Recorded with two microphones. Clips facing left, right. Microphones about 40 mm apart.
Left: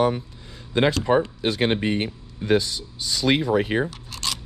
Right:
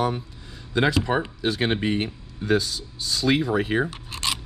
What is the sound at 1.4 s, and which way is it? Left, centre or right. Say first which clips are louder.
Speech: left 2 dB; left.